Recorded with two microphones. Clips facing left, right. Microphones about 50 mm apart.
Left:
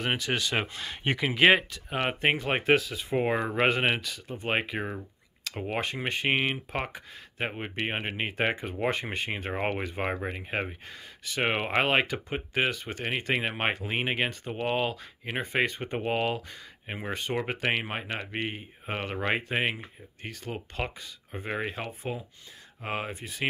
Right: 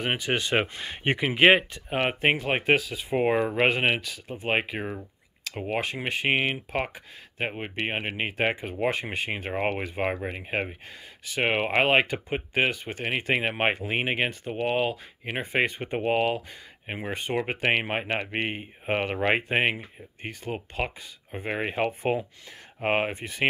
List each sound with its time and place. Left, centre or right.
0.0 s speech: centre
21.4 s speech: right
21.8 s speech: right